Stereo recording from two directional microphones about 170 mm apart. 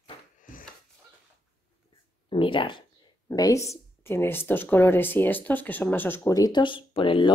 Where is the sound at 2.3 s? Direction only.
30° left (ahead or behind).